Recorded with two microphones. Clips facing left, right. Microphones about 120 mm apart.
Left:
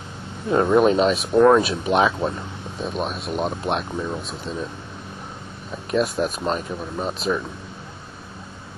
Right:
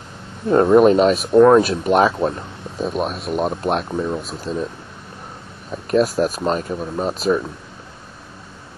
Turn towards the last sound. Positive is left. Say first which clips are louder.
# right 5 dB
turn(degrees=0)  # may be behind; listen again after turning